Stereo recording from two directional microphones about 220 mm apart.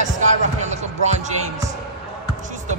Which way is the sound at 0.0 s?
35° right (ahead or behind).